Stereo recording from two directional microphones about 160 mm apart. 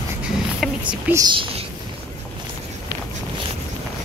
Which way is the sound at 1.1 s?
30° right (ahead or behind).